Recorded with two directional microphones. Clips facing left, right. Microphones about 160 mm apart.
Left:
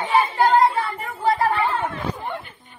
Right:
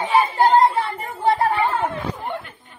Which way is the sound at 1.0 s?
25° right (ahead or behind).